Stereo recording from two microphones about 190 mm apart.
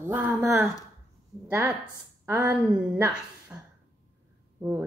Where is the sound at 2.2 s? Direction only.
15° right (ahead or behind).